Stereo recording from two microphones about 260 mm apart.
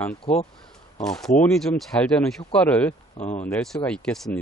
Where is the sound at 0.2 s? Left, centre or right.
Left.